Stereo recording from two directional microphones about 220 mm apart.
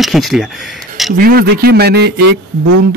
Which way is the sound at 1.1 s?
45° right (ahead or behind).